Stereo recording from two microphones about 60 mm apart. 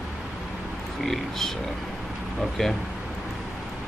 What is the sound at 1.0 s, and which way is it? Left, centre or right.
Speech, centre.